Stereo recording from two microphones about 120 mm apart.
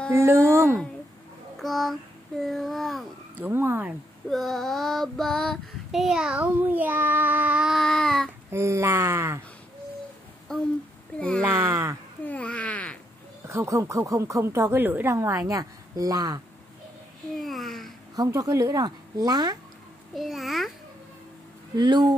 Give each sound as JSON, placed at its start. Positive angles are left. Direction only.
{"t": 0.1, "sound": "speech", "side_deg": -20}
{"t": 1.6, "sound": "speech", "side_deg": 0}
{"t": 3.3, "sound": "speech", "side_deg": -15}
{"t": 4.3, "sound": "child singing", "side_deg": 0}
{"t": 8.5, "sound": "speech", "side_deg": -25}
{"t": 10.5, "sound": "humming", "side_deg": 5}
{"t": 11.1, "sound": "speech", "side_deg": 10}
{"t": 11.4, "sound": "speech", "side_deg": -20}
{"t": 12.3, "sound": "babbling", "side_deg": 10}
{"t": 13.5, "sound": "speech", "side_deg": -25}
{"t": 17.4, "sound": "speech", "side_deg": 0}
{"t": 18.1, "sound": "speech", "side_deg": -30}
{"t": 20.2, "sound": "speech", "side_deg": 0}
{"t": 21.7, "sound": "speech", "side_deg": -35}